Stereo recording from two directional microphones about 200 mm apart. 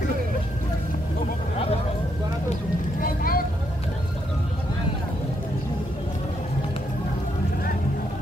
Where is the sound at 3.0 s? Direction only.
45° left (ahead or behind).